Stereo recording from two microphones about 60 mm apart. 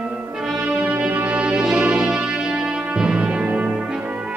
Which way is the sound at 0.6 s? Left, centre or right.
Centre.